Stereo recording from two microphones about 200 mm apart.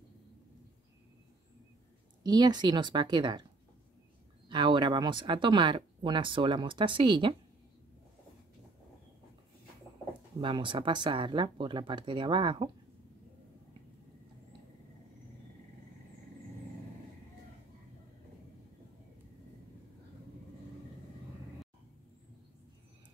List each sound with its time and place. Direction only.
2.2 s speech: 20° right (ahead or behind)
4.5 s speech: 25° right (ahead or behind)
10.4 s speech: 25° right (ahead or behind)